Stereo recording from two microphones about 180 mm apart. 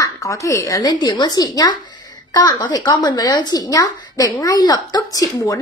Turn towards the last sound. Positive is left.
turn(degrees=20)  # may be behind; listen again after turning